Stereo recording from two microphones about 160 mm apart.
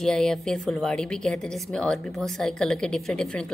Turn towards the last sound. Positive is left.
turn(degrees=5)  # may be behind; listen again after turning